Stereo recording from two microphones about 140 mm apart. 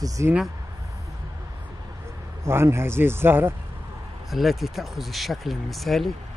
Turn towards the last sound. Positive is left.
turn(degrees=0)  # may be behind; listen again after turning